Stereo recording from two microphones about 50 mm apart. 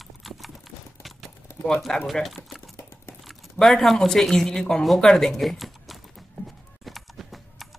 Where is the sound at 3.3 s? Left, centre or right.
Centre.